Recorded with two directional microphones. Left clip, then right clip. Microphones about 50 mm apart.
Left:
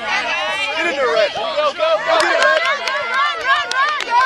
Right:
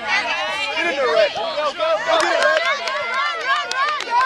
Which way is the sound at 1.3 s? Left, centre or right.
Left.